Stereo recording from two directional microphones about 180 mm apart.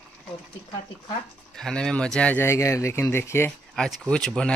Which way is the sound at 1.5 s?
5° left (ahead or behind).